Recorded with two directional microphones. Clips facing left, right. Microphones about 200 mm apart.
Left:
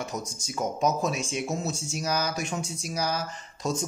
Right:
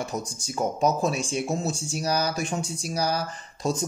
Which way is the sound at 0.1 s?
30° right (ahead or behind).